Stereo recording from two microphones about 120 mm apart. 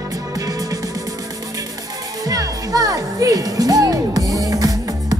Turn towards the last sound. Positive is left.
turn(degrees=-30)  # may be behind; listen again after turning